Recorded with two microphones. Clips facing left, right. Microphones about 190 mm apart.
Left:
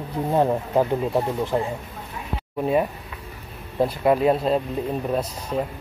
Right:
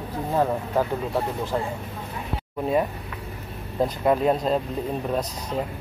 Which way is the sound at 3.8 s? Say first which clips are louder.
Left 2 dB; 5° left (ahead or behind).